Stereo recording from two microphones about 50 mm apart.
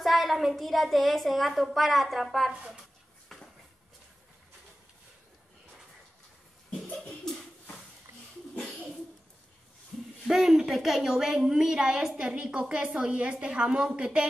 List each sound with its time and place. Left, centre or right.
0.0 s a woman's voice: centre
2.5 s a woman's voice: right
10.2 s a woman's voice: centre